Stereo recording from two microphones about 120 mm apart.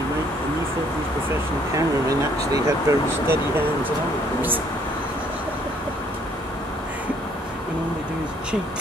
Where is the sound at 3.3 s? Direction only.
15° right (ahead or behind).